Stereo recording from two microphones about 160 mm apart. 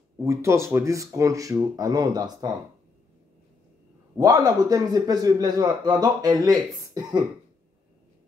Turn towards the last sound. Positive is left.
turn(degrees=-25)  # may be behind; listen again after turning